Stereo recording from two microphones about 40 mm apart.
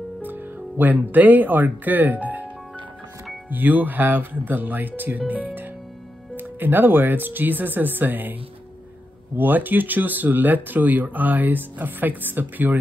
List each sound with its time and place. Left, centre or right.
0.2 s speech: right
3.4 s speech: right
9.4 s speech: right